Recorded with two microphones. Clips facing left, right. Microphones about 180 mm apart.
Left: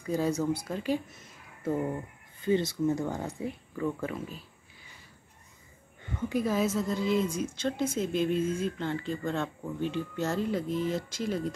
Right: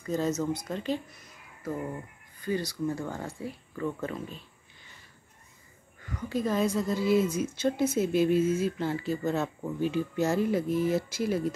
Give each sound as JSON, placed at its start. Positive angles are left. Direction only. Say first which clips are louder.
{"t": 0.0, "sound": "speech", "louder": "even", "side_deg": 10}
{"t": 2.4, "sound": "speech", "louder": "left 4 dB", "side_deg": 25}
{"t": 6.0, "sound": "a sound", "louder": "left 3 dB", "side_deg": 25}
{"t": 6.3, "sound": "a woman's voice", "louder": "right 1 dB", "side_deg": 5}